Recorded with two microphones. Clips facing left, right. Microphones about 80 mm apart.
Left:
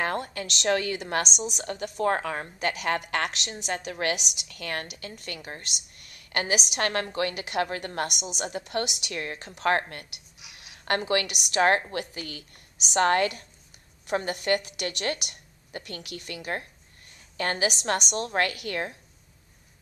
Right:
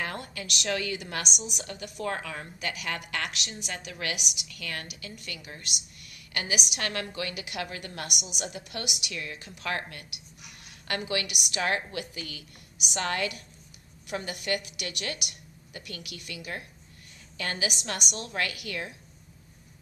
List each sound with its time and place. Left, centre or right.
0.0 s a woman's voice: left
17.6 s a woman's voice: left